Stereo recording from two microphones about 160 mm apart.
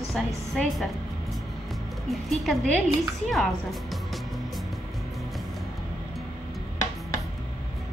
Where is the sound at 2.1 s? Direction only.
Centre (ahead or behind).